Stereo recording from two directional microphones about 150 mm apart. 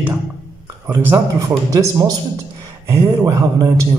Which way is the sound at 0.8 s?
10° right (ahead or behind).